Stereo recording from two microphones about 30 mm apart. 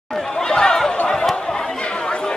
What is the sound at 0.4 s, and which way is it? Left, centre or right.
Chatter, left.